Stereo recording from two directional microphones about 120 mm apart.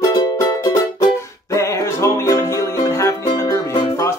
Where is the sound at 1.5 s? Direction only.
25° left (ahead or behind).